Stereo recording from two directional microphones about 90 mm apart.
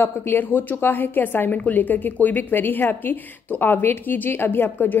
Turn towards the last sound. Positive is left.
turn(degrees=25)  # may be behind; listen again after turning